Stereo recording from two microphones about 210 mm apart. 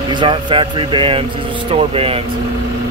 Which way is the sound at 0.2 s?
25° right (ahead or behind).